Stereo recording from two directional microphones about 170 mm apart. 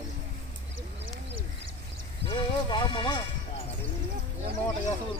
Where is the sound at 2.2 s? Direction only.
30° left (ahead or behind).